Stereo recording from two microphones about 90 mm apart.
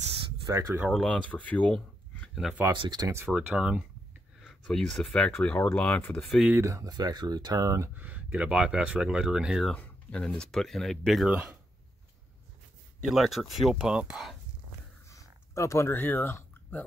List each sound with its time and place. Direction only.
0.5 s speech: 35° right (ahead or behind)
0.9 s speech: 15° left (ahead or behind)
2.7 s speech: 55° right (ahead or behind)
3.3 s speech: 10° right (ahead or behind)
4.4 s speech: centre (ahead or behind)
6.1 s speech: 5° left (ahead or behind)
6.6 s speech: 40° right (ahead or behind)
7.9 s speech: 20° right (ahead or behind)
9.7 s speech: 10° left (ahead or behind); by 11.5 s 5° right (ahead or behind)
13.1 s speech: centre (ahead or behind)
15.1 s a sound: 35° left (ahead or behind)